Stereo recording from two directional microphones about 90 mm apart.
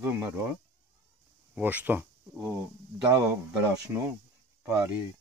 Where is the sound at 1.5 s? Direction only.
15° right (ahead or behind).